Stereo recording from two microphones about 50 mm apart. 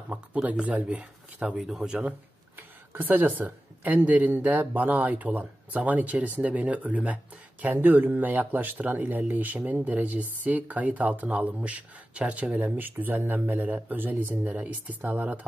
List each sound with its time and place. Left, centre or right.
0.1 s speech: right
2.5 s speech: right
7.7 s speech: right
12.5 s speech: right
15.0 s speech: right